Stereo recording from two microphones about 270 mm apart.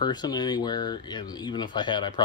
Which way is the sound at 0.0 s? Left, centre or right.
Centre.